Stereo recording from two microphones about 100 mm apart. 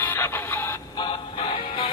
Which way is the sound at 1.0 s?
50° left (ahead or behind).